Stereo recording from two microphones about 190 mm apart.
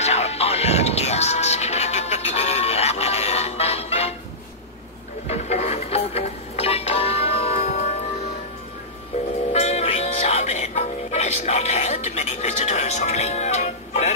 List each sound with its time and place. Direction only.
0.0 s music: 35° left (ahead or behind)
5.3 s music: 35° left (ahead or behind)
9.5 s music: 35° left (ahead or behind)